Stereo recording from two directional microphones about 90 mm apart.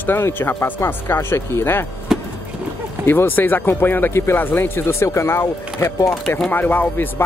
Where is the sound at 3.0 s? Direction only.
20° left (ahead or behind).